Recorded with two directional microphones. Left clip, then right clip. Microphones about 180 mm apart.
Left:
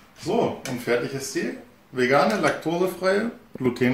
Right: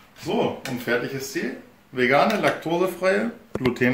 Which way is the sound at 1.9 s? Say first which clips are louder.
Right 1 dB; centre (ahead or behind).